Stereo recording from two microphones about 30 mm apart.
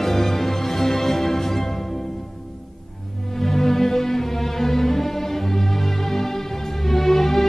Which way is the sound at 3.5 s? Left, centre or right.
Centre.